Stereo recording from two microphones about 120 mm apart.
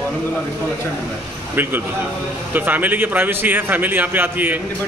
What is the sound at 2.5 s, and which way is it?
A man's voice, 15° right (ahead or behind).